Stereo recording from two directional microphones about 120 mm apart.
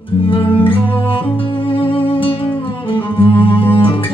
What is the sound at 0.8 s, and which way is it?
Music, 15° left (ahead or behind).